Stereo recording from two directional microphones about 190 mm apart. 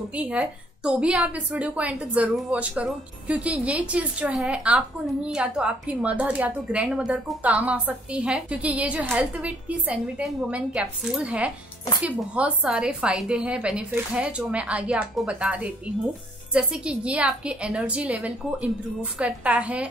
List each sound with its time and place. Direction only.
0.1 s a woman's voice: 5° right (ahead or behind)